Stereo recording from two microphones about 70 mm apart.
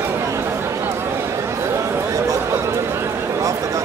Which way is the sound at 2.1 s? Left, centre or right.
Right.